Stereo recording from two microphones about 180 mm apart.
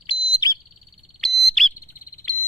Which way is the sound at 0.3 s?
20° left (ahead or behind).